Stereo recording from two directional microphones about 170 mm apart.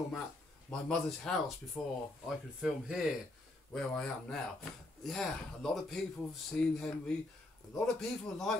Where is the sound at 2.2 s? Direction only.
5° right (ahead or behind).